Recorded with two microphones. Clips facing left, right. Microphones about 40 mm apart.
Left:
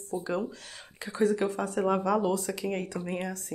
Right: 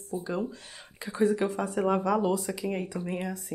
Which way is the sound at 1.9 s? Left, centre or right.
Centre.